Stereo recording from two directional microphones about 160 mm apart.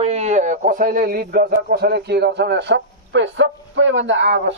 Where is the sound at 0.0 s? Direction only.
40° right (ahead or behind); by 3.2 s 90° right.